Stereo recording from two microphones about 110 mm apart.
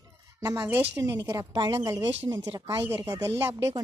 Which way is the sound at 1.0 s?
30° right (ahead or behind).